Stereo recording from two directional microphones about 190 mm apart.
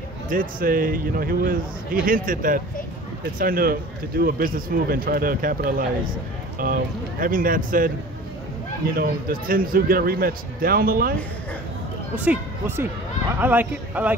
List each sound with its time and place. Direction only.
0.3 s a man's voice: 45° right (ahead or behind)
8.9 s a man's voice: 50° right (ahead or behind)
12.3 s speech: 10° right (ahead or behind)